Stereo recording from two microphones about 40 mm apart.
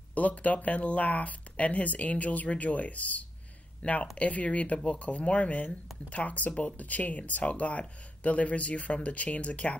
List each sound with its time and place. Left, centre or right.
0.1 s speech: left